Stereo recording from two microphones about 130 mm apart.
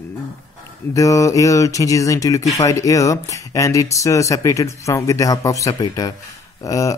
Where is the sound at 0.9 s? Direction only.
25° left (ahead or behind).